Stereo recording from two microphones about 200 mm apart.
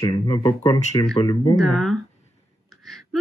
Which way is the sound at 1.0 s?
30° left (ahead or behind).